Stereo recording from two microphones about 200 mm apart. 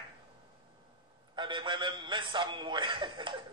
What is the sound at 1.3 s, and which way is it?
Speech, 25° right (ahead or behind).